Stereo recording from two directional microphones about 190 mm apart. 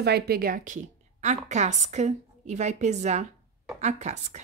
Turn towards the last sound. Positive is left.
turn(degrees=-35)  # may be behind; listen again after turning